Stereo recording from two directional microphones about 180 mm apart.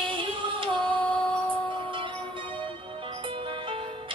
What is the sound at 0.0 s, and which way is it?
Music, 25° right (ahead or behind).